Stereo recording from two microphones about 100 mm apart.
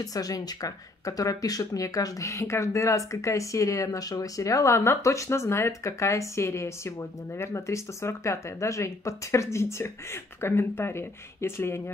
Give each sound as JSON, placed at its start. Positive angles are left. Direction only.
{"t": 0.0, "sound": "speech", "side_deg": 35}